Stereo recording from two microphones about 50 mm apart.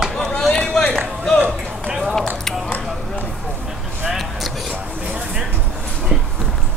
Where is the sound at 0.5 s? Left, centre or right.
Centre.